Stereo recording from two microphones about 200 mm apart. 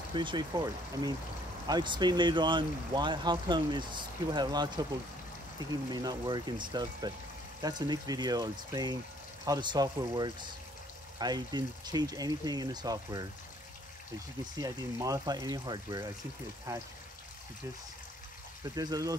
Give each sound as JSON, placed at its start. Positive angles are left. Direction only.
{"t": 0.1, "sound": "speech", "side_deg": -25}
{"t": 5.9, "sound": "speech", "side_deg": -20}
{"t": 14.6, "sound": "speech", "side_deg": -15}
{"t": 18.8, "sound": "speech", "side_deg": -15}